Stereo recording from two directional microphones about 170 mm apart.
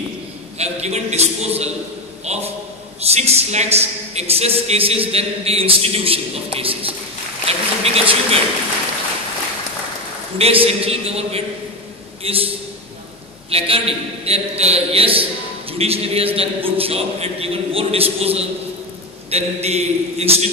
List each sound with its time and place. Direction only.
0.6 s a man's voice: 40° right (ahead or behind)
10.3 s a man's voice: 35° right (ahead or behind)
13.5 s a man's voice: 35° right (ahead or behind)